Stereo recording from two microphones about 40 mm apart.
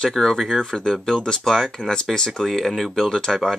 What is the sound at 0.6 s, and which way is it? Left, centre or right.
Speech, centre.